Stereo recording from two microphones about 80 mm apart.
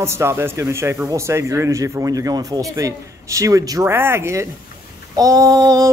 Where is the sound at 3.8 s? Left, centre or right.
Right.